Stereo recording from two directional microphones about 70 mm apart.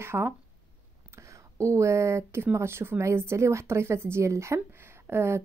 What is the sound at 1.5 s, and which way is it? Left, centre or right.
A woman's voice, right.